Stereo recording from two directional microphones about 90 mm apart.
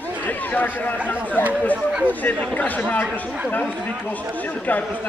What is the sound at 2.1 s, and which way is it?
Speech, 20° left (ahead or behind).